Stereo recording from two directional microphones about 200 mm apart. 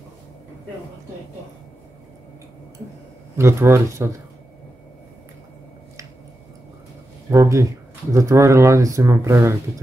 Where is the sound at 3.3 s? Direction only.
15° right (ahead or behind).